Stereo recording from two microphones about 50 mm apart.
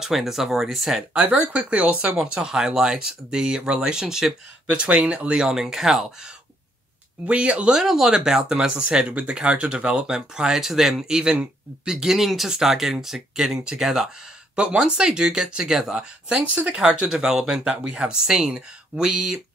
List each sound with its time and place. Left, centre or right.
0.0 s speech: centre
1.1 s speech: right
2.2 s speech: centre
4.6 s speech: right; by 6.0 s centre
7.2 s speech: right
7.7 s speech: centre
14.5 s speech: centre